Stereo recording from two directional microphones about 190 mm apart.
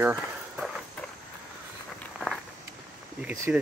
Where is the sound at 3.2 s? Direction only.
10° right (ahead or behind).